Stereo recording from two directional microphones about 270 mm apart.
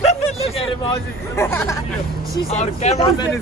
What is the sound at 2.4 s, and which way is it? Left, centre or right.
Speech, left.